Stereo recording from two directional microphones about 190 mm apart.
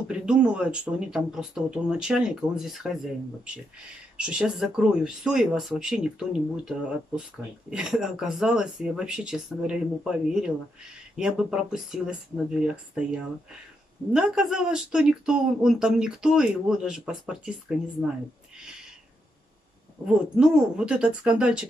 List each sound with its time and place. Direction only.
0.2 s speech: 5° right (ahead or behind)
4.2 s speech: 5° right (ahead or behind)
7.7 s speech: centre (ahead or behind)
20.3 s speech: 5° right (ahead or behind)